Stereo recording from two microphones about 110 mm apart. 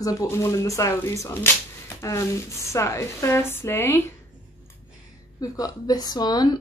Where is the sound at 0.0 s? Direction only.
30° left (ahead or behind).